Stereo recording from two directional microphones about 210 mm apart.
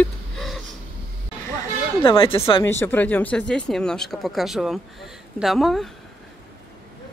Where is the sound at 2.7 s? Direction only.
10° left (ahead or behind).